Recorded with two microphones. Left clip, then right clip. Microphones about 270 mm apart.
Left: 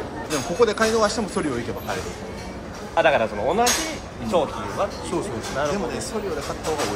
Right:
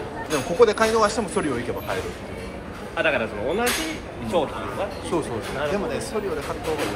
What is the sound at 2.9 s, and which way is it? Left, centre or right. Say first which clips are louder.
A man's voice: left 4 dB; left.